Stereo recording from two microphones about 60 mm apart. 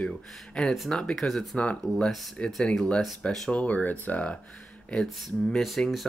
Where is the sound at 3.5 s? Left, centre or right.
Left.